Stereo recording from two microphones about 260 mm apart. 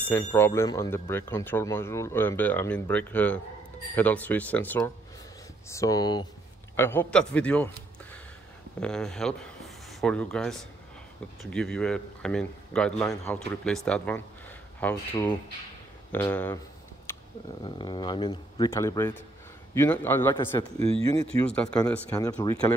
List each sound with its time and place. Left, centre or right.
0.1 s speech: centre
8.7 s speech: centre
17.1 s a sound: centre
17.6 s speech: centre
20.8 s speech: right
21.4 s speech: centre